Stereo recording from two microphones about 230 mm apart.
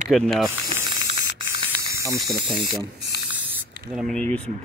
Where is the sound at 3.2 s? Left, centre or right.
Centre.